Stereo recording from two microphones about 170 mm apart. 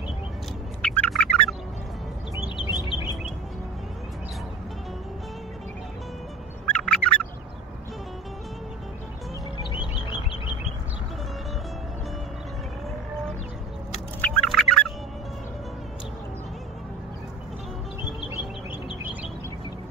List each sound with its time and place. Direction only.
0.8 s bird: 5° left (ahead or behind)
2.8 s bird: 25° left (ahead or behind)
6.6 s turkey: 5° left (ahead or behind)
10.0 s bird: 30° left (ahead or behind)
14.2 s music: 5° left (ahead or behind)